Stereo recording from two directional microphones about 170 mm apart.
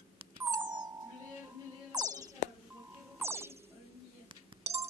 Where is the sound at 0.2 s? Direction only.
30° right (ahead or behind).